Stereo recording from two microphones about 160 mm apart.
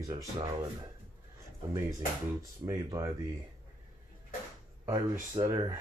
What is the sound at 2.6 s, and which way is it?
Speech, 25° right (ahead or behind).